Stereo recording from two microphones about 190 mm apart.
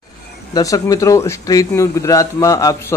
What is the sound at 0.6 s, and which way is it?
A man's voice, 20° left (ahead or behind).